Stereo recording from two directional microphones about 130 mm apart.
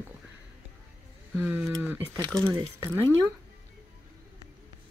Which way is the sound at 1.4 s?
10° right (ahead or behind).